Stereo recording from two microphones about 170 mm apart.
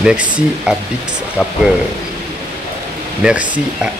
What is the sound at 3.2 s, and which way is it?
Speech, 5° right (ahead or behind).